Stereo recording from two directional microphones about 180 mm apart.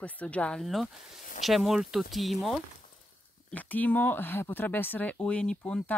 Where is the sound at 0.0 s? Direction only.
5° left (ahead or behind).